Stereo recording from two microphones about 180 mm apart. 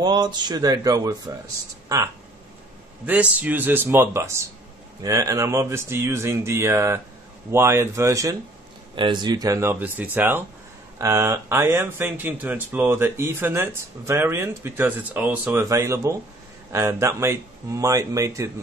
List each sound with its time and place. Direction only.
0.0 s speech: 25° right (ahead or behind)
3.1 s speech: 10° right (ahead or behind)